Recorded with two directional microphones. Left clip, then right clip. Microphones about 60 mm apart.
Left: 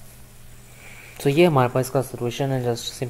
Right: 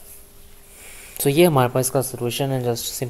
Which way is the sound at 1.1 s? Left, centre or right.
Centre.